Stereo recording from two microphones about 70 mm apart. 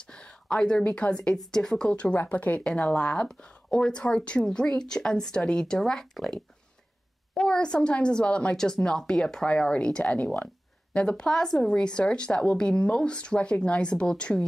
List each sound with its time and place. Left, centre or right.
0.0 s speech: centre